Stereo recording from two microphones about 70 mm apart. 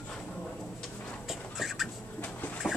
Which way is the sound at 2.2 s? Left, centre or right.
Left.